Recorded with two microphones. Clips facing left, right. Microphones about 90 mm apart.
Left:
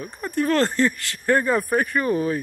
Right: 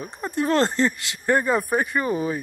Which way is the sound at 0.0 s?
20° right (ahead or behind).